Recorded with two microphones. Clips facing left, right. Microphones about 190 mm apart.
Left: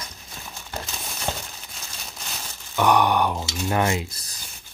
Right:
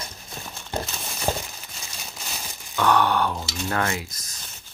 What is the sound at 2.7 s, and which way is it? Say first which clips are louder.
Speech: left 2 dB; 15° left (ahead or behind).